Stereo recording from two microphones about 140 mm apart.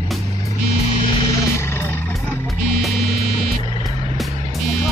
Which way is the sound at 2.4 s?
Centre (ahead or behind).